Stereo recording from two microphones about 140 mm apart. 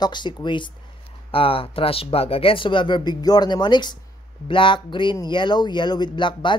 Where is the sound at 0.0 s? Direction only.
35° left (ahead or behind).